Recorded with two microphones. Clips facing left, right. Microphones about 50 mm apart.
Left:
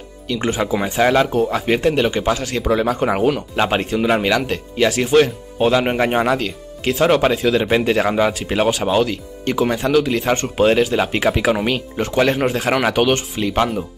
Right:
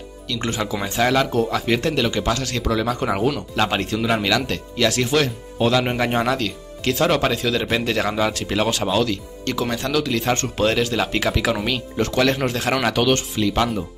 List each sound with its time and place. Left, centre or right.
0.3 s speech: centre